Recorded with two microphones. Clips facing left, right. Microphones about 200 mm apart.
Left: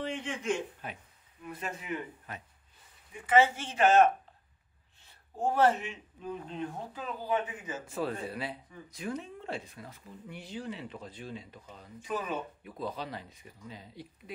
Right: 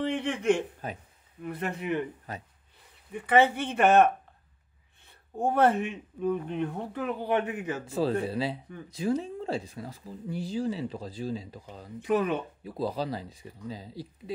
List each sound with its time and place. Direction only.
0.0 s speech: 65° right (ahead or behind)
2.3 s speech: 40° right (ahead or behind)
3.1 s speech: 60° right (ahead or behind)
8.3 s speech: 30° right (ahead or behind)
12.0 s speech: 65° right (ahead or behind)
12.6 s speech: 35° right (ahead or behind)